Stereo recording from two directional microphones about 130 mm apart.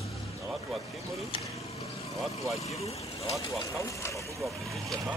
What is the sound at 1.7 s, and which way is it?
Vehicle, 55° left (ahead or behind).